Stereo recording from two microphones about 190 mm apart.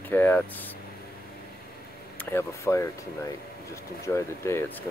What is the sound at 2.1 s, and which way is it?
Speech, 15° left (ahead or behind).